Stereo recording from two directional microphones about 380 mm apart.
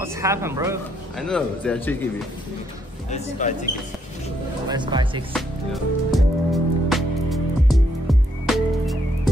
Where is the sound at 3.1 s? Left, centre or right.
Centre.